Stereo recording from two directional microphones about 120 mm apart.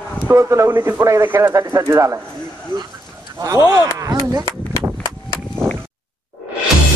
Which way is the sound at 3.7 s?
30° right (ahead or behind).